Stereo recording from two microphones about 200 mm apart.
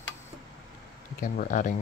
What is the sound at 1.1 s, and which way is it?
Speech, 45° left (ahead or behind).